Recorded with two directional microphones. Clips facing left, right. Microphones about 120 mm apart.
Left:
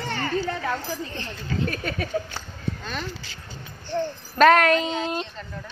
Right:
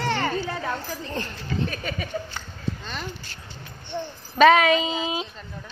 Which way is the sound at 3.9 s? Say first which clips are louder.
Left 5 dB; centre (ahead or behind).